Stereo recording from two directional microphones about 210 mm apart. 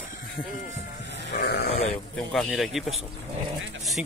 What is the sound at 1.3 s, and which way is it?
Speech, 50° left (ahead or behind).